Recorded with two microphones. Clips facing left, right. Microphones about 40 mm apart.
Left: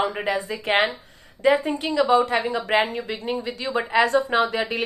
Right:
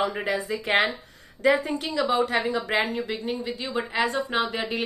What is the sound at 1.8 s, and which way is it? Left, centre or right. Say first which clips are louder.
Speech: left 5 dB; left.